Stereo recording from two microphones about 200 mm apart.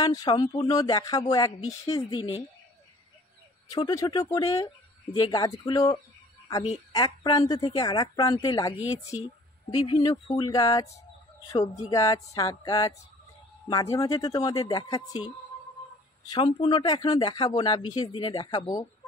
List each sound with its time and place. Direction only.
0.0 s speech: 20° left (ahead or behind)
3.6 s speech: 20° left (ahead or behind)
16.3 s speech: 25° left (ahead or behind)